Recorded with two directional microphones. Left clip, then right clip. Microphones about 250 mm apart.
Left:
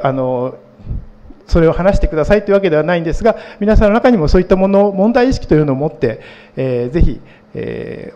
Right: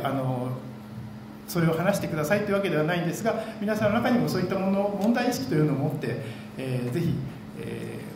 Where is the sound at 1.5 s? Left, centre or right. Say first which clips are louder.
Left 14 dB; left.